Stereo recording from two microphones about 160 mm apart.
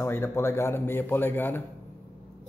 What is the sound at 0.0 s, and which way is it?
Speech, 15° left (ahead or behind).